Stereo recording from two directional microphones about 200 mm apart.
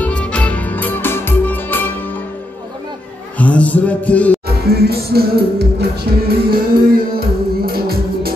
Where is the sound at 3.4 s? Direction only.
5° left (ahead or behind).